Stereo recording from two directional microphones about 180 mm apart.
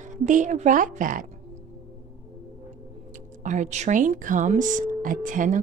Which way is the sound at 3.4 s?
40° right (ahead or behind).